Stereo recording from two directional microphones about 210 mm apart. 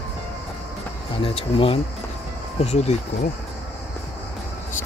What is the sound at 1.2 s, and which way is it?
Speech, 25° left (ahead or behind).